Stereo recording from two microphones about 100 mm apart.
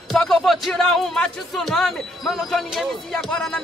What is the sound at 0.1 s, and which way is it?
Speech, 5° left (ahead or behind).